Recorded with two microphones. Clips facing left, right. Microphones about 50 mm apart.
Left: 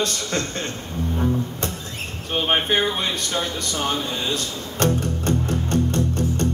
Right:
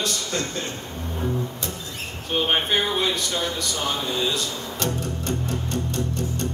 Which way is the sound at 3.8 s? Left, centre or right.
Left.